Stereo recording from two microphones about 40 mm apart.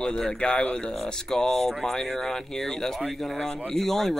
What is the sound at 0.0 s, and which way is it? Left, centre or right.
Speech, centre.